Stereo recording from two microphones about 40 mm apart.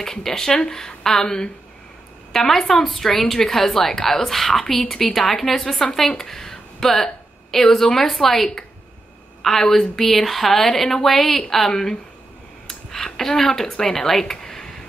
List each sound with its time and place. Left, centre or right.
0.0 s a woman's voice: centre